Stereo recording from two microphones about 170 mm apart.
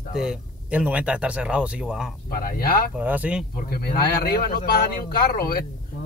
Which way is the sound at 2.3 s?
60° left (ahead or behind).